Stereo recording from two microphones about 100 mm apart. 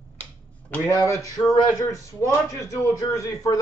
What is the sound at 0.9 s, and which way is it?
Speech, 30° left (ahead or behind).